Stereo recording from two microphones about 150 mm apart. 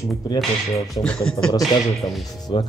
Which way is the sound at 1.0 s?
5° left (ahead or behind).